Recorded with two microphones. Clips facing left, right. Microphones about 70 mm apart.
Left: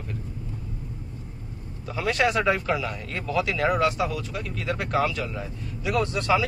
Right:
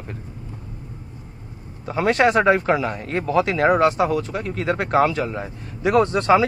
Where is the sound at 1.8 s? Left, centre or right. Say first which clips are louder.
Right 6 dB; right.